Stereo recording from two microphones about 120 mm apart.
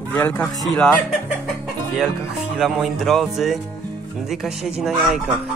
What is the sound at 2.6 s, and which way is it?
Speech, centre (ahead or behind).